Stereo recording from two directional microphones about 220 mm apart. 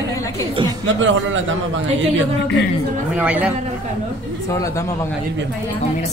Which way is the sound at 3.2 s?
5° right (ahead or behind).